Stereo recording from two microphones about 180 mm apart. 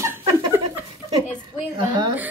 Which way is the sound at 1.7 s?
25° right (ahead or behind).